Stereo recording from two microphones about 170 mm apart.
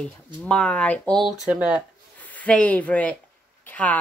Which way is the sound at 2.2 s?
10° left (ahead or behind).